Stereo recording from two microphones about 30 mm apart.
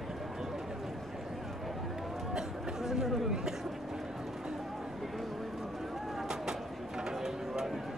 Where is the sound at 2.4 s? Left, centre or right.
Centre.